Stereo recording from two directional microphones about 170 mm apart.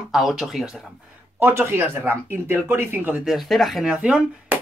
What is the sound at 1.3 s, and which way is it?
Speech, 15° right (ahead or behind).